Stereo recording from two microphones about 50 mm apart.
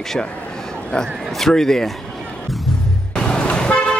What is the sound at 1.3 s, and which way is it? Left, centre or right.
Speech, centre.